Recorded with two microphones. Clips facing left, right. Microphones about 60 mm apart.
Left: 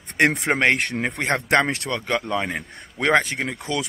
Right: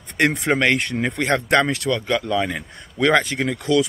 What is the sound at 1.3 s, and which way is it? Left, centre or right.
Speech, left.